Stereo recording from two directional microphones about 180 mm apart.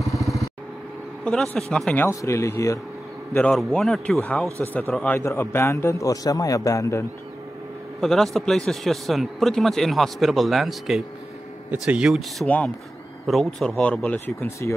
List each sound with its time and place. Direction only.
1.2 s speech: 5° left (ahead or behind)
2.0 s a man's voice: 15° left (ahead or behind)
3.3 s a man's voice: 5° left (ahead or behind)
8.0 s speech: centre (ahead or behind)